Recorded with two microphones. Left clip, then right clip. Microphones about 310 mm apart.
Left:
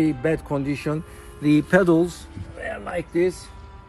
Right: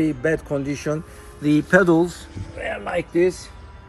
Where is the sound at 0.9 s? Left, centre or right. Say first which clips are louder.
Right 4 dB; centre.